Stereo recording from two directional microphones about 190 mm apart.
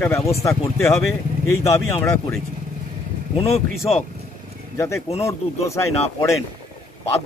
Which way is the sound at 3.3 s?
30° left (ahead or behind).